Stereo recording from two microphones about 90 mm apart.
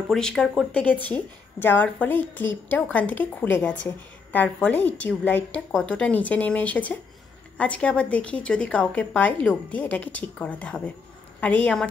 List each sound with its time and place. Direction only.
0.1 s a woman's voice: 5° left (ahead or behind)